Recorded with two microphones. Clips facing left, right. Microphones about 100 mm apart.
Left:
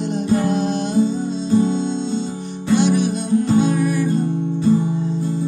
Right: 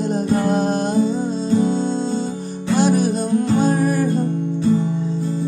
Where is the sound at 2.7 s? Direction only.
40° right (ahead or behind).